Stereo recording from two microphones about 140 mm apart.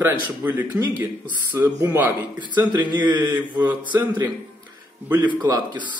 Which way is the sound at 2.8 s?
30° right (ahead or behind).